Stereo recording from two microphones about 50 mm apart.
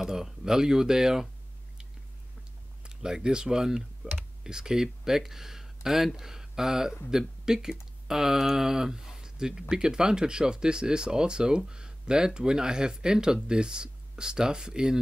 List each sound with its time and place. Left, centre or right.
0.0 s speech: centre
2.8 s speech: centre